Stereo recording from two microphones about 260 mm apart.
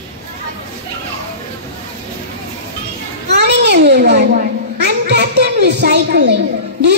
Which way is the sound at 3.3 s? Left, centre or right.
Right.